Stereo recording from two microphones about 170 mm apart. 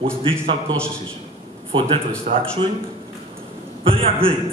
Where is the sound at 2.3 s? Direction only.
40° right (ahead or behind).